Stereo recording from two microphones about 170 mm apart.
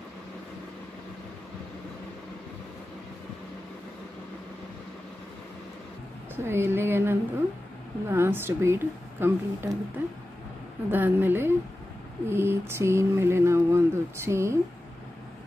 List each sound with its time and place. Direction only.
6.3 s mantra: 15° right (ahead or behind)